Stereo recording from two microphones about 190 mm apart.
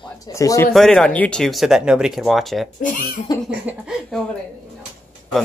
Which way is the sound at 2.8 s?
45° left (ahead or behind).